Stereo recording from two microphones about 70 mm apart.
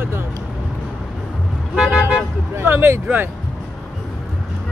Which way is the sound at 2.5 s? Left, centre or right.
Right.